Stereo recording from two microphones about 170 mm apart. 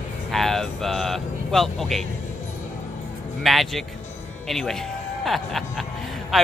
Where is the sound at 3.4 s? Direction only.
Centre (ahead or behind).